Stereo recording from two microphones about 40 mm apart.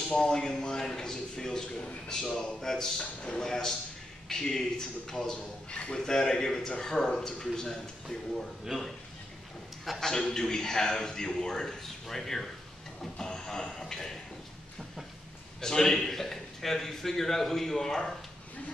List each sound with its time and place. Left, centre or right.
0.2 s a man's voice: centre
5.7 s a man's voice: left
9.9 s a man's voice: centre
15.6 s a man's voice: centre